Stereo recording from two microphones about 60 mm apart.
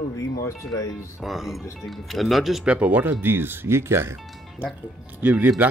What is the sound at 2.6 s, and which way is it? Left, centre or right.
Speech, right.